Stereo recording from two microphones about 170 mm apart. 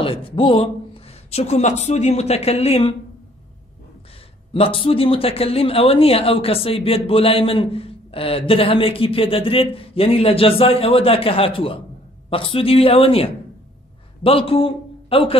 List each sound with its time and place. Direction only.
0.0 s speech: 30° left (ahead or behind)
4.6 s a man's voice: 35° left (ahead or behind)